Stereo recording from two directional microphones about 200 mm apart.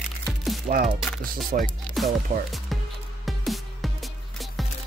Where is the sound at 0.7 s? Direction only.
35° right (ahead or behind).